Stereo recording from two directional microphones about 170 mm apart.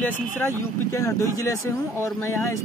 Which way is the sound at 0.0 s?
10° left (ahead or behind).